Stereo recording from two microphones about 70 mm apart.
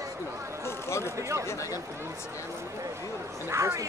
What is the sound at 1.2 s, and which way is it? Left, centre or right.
Speech, right.